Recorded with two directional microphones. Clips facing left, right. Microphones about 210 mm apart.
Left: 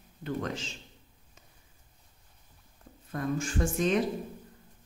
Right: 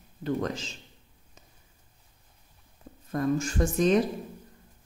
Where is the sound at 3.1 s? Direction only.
40° right (ahead or behind).